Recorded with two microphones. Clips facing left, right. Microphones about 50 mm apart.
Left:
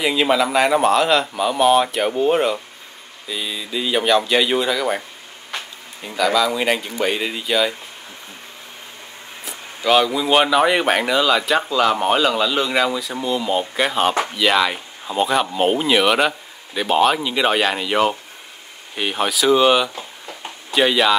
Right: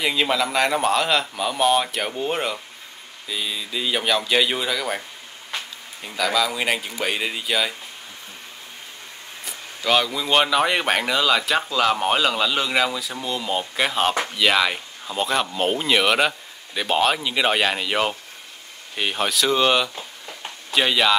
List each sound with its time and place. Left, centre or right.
0.0 s speech: centre
6.0 s speech: centre
9.8 s speech: centre